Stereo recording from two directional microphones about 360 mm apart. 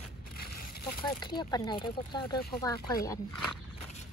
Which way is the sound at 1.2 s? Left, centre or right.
Centre.